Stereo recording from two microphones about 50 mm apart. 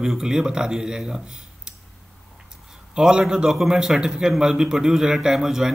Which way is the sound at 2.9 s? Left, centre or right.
Centre.